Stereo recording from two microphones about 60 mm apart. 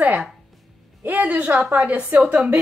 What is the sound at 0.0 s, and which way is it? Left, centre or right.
A woman's voice, right.